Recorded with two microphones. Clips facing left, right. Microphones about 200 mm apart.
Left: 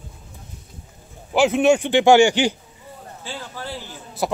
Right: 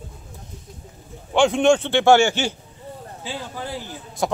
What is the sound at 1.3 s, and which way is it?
A man's voice, 5° left (ahead or behind).